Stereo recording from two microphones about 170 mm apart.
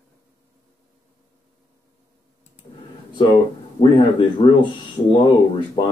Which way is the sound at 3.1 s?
25° left (ahead or behind).